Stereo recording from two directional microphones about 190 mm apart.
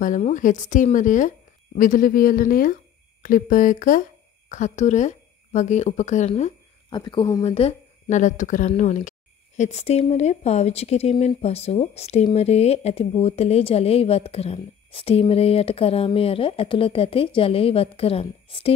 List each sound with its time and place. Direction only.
0.0 s speech: 40° left (ahead or behind)
6.9 s speech: 25° left (ahead or behind)
7.4 s speech: 30° left (ahead or behind)